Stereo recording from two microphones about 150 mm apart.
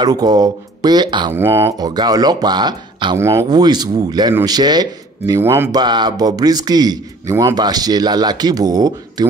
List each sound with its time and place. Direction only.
0.0 s a man's voice: 25° right (ahead or behind)
1.3 s a man's voice: 15° right (ahead or behind)
3.2 s a man's voice: 20° right (ahead or behind)
5.7 s a man's voice: 30° right (ahead or behind)